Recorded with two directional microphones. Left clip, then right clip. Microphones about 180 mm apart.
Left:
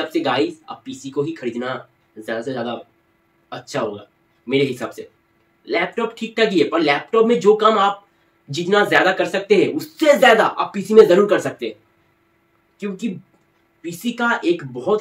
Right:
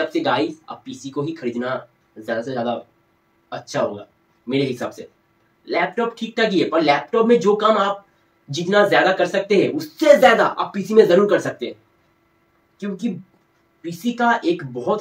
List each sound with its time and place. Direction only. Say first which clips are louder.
0.1 s speech: left 1 dB; 15° left (ahead or behind)
4.5 s speech: left 2 dB; 15° left (ahead or behind)
13.8 s speech: right 2 dB; 20° left (ahead or behind)